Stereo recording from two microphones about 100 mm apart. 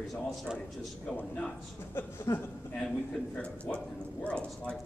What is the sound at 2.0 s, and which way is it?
Speech, 25° left (ahead or behind).